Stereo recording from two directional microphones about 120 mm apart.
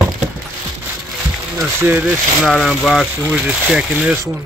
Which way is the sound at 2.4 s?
Centre (ahead or behind).